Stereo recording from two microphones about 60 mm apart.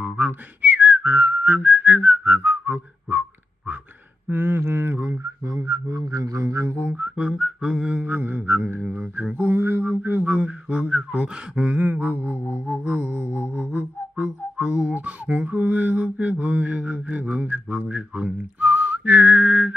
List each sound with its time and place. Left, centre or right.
0.0 s whistling: right
4.3 s a sound: right
5.2 s whistling: right
5.7 s music: right
6.8 s whistling: right
7.2 s a sound: centre
8.0 s music: right
9.1 s a sound: right
11.9 s music: right
13.0 s music: left
13.6 s music: right
15.0 s mantra: right